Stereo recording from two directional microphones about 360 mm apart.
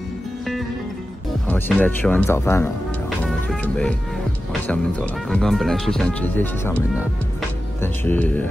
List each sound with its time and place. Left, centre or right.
1.5 s speech: centre
3.3 s music: centre
4.6 s speech: centre
7.8 s speech: centre